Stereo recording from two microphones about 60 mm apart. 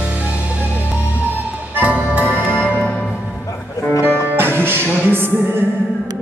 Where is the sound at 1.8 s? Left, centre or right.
Right.